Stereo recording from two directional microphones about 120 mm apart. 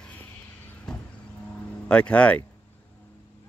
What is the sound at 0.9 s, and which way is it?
Vehicle, 5° left (ahead or behind).